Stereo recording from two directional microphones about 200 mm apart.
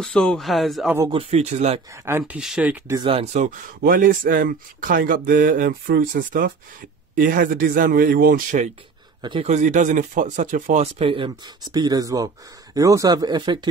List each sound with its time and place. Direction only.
0.0 s speech: 5° left (ahead or behind)
1.1 s speech: 30° right (ahead or behind)
1.9 s speech: 10° right (ahead or behind)
3.0 s speech: 30° right (ahead or behind)
9.2 s speech: 25° right (ahead or behind)